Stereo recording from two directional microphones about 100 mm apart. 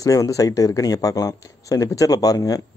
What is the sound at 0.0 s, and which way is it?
Speech, 35° left (ahead or behind).